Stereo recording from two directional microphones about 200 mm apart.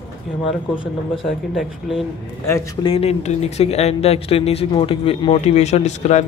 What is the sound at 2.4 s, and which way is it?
Speech, 15° left (ahead or behind).